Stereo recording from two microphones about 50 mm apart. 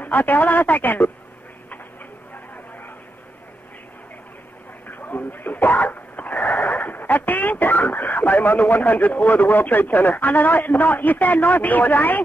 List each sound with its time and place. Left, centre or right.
0.0 s speech: left
4.8 s speech: left